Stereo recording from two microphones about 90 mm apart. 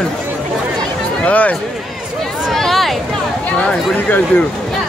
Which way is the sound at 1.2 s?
15° left (ahead or behind).